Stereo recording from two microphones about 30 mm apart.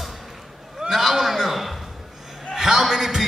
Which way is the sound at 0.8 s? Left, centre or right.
Centre.